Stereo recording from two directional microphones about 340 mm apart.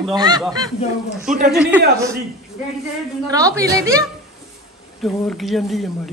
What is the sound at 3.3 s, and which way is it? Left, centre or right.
Speech, centre.